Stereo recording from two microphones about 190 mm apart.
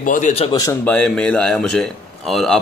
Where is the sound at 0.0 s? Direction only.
40° left (ahead or behind).